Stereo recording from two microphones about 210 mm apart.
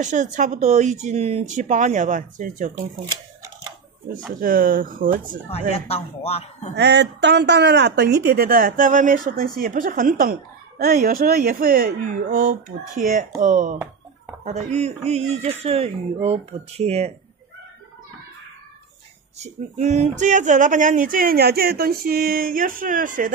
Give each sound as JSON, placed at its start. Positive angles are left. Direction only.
{"t": 0.0, "sound": "speech", "side_deg": -35}
{"t": 4.4, "sound": "speech", "side_deg": -40}
{"t": 5.7, "sound": "speech", "side_deg": 30}
{"t": 6.7, "sound": "speech", "side_deg": -55}
{"t": 19.3, "sound": "speech", "side_deg": -30}